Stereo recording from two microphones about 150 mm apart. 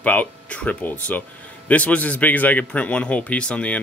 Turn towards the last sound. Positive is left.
turn(degrees=5)  # may be behind; listen again after turning